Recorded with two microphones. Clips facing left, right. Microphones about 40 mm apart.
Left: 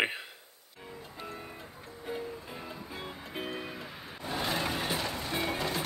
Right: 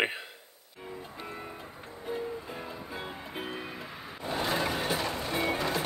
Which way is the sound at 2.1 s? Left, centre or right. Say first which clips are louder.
Right 3 dB; centre.